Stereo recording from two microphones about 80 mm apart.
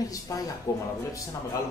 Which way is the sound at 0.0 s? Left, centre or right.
Left.